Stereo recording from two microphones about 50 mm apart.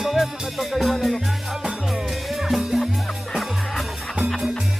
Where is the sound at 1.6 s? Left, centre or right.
Centre.